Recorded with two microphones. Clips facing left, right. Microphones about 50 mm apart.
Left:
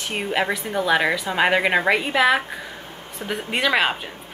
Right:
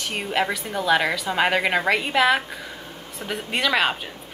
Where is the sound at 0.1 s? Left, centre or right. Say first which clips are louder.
Left 2 dB; centre.